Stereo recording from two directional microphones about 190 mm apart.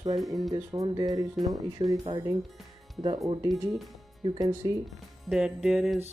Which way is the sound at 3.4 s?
15° right (ahead or behind).